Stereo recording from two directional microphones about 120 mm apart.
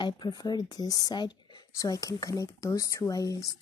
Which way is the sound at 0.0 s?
35° left (ahead or behind).